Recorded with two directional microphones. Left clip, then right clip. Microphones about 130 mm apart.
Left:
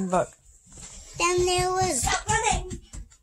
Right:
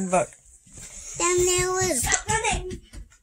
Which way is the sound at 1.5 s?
5° left (ahead or behind).